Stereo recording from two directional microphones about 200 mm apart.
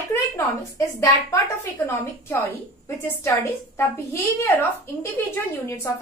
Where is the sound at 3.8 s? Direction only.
10° left (ahead or behind).